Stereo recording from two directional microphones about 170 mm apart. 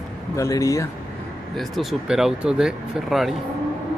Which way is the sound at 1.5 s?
Centre (ahead or behind).